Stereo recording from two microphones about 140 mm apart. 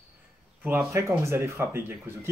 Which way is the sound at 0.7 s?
20° right (ahead or behind).